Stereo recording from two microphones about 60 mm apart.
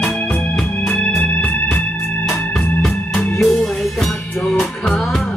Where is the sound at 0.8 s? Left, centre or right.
Left.